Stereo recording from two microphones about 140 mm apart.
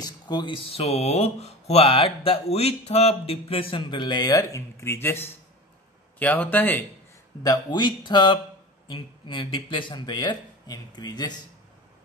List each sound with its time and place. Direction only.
0.0 s speech: 30° left (ahead or behind); by 6.8 s 10° left (ahead or behind)
7.4 s speech: 30° left (ahead or behind)